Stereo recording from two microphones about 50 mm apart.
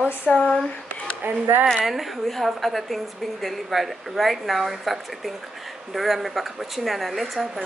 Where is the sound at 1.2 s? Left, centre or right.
Right.